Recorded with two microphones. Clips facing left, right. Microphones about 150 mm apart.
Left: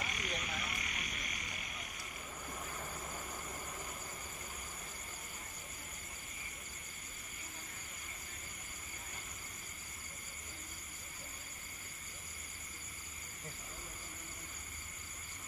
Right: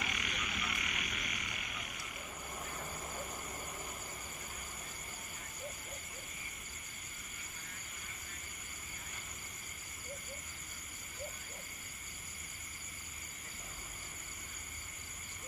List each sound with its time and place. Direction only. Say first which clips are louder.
0.0 s frog: even; 35° left (ahead or behind)